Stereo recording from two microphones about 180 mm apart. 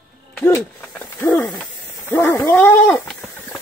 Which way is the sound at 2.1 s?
10° left (ahead or behind).